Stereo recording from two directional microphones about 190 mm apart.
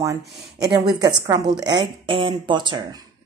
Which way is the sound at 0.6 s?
20° right (ahead or behind).